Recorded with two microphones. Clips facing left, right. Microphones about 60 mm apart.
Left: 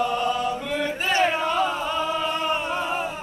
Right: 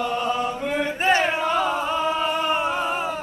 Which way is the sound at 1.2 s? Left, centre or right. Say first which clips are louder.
Right 1 dB; centre.